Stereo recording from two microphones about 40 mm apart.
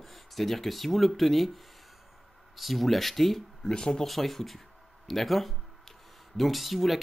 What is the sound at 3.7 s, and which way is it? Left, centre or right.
Speech, centre.